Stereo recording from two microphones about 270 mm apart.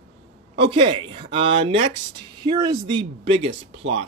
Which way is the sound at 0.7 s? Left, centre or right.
Centre.